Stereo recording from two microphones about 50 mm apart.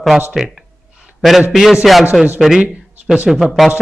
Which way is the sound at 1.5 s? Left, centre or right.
Centre.